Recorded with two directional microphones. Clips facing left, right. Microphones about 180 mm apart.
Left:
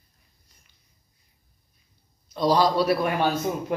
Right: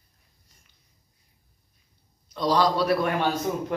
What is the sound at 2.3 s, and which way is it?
A man's voice, 10° left (ahead or behind).